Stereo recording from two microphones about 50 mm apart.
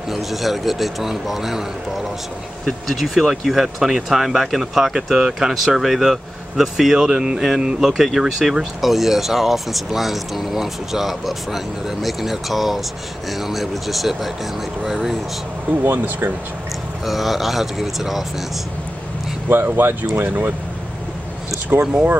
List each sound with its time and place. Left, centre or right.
0.1 s speech: centre
7.1 s music: centre
7.8 s speech: centre
14.8 s music: centre
15.8 s speech: right
17.0 s speech: centre
19.5 s speech: right
20.2 s speech: right
21.9 s speech: right